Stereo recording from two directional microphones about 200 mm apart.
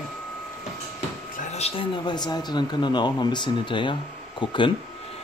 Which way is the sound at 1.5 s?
30° left (ahead or behind).